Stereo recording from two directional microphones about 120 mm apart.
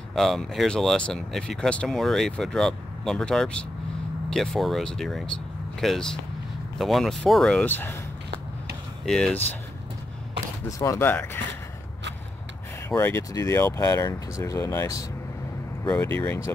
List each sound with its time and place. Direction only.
0.1 s speech: centre (ahead or behind); by 8.0 s 15° left (ahead or behind)
9.0 s speech: 5° left (ahead or behind)
10.8 s speech: 20° left (ahead or behind)
12.9 s speech: 20° left (ahead or behind)